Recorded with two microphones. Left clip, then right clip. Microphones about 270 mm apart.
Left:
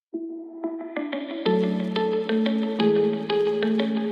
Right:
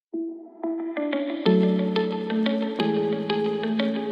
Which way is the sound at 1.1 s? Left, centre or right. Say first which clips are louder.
Right 2 dB; centre.